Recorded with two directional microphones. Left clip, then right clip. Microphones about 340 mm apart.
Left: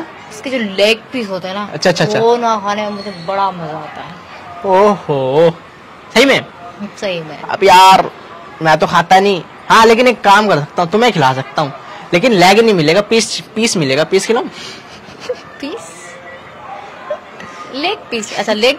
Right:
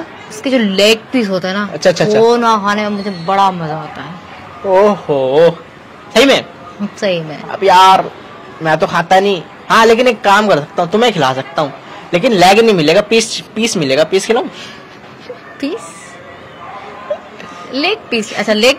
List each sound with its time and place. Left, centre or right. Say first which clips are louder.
0.4 s a woman's voice: right 2 dB; centre
1.7 s a man's voice: right 2 dB; left
2.2 s a man's voice: even; centre
4.6 s a man's voice: even; left
7.0 s a woman's voice: right 4 dB; centre
7.4 s speech: left 1 dB; left
8.6 s a man's voice: left 2 dB; left
15.6 s a woman's voice: right 5 dB; centre
17.7 s a woman's voice: right 3 dB; centre